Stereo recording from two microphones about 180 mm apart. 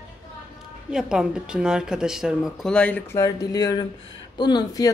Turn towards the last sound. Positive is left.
turn(degrees=20)  # may be behind; listen again after turning